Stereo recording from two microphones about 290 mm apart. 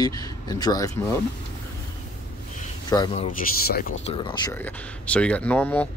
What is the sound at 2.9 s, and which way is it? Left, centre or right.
Speech, centre.